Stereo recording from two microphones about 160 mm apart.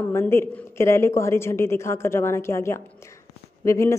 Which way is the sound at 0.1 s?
15° left (ahead or behind).